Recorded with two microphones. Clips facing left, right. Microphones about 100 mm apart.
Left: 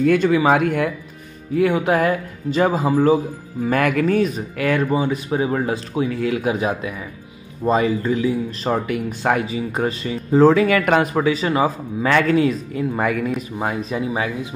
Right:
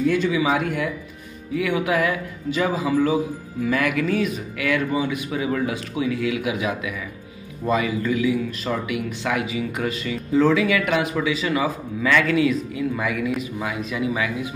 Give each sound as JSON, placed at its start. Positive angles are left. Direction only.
{"t": 0.0, "sound": "speech", "side_deg": 55}
{"t": 1.5, "sound": "a man's voice", "side_deg": 40}